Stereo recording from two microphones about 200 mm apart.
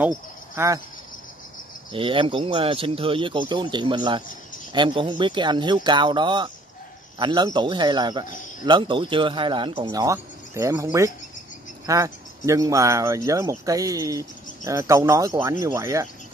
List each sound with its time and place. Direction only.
0.0 s cricket: 15° right (ahead or behind)
1.9 s speech: 25° right (ahead or behind)